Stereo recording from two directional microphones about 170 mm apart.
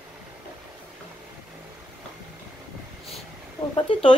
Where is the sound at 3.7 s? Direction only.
30° left (ahead or behind).